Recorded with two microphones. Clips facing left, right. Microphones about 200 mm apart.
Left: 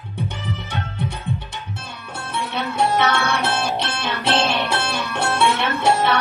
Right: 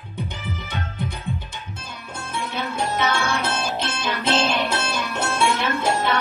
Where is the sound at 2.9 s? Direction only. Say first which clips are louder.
Left 3 dB; 65° left (ahead or behind).